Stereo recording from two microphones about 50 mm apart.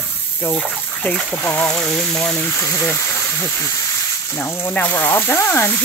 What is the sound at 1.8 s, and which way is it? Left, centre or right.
Speech, centre.